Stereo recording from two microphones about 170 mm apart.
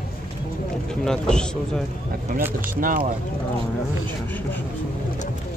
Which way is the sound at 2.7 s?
55° right (ahead or behind).